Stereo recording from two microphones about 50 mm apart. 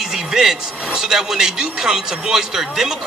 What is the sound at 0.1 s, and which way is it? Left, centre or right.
Speech, centre.